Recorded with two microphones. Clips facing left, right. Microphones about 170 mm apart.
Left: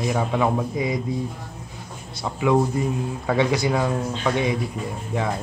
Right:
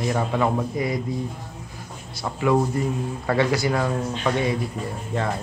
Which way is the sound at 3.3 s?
20° left (ahead or behind).